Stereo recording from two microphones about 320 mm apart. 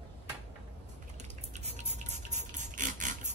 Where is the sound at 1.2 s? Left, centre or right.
Right.